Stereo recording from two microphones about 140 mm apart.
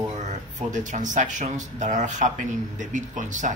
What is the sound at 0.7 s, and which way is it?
Speech, 65° right (ahead or behind).